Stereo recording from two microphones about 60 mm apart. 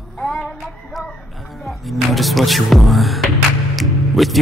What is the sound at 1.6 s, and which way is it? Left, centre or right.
Music, centre.